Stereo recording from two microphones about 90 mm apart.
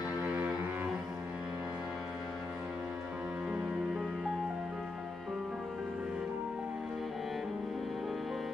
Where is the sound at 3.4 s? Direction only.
10° right (ahead or behind).